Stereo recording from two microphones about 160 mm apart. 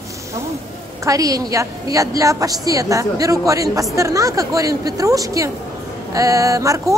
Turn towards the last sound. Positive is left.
turn(degrees=-20)  # may be behind; listen again after turning